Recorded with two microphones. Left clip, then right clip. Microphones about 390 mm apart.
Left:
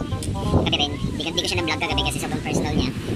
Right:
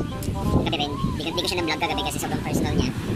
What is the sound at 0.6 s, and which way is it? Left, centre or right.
Speech, centre.